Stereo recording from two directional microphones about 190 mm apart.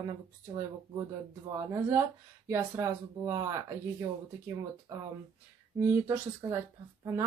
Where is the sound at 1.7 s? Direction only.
15° right (ahead or behind).